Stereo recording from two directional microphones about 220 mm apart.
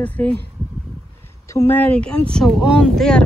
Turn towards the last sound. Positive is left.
turn(degrees=0)  # may be behind; listen again after turning